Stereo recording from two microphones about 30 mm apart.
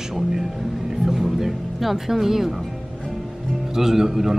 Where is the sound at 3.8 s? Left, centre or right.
Centre.